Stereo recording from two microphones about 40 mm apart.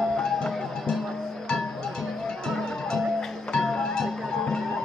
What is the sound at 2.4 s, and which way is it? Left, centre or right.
Music, centre.